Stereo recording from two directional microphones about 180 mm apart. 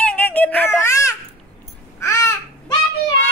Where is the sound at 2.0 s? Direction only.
15° left (ahead or behind).